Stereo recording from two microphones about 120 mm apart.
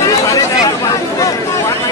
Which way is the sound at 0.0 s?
25° left (ahead or behind).